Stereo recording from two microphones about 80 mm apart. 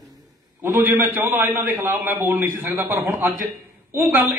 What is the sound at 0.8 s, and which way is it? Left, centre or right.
Speech, right.